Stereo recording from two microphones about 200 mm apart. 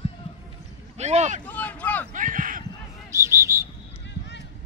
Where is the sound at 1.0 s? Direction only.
35° right (ahead or behind).